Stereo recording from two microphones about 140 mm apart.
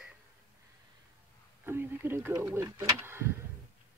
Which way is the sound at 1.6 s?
15° right (ahead or behind).